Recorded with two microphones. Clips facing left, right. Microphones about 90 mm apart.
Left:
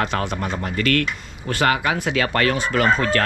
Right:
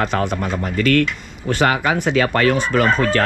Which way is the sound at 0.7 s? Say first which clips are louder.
Right 5 dB; 50° left (ahead or behind).